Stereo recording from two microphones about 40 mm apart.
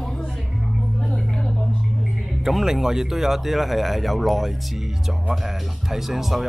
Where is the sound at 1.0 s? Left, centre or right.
Centre.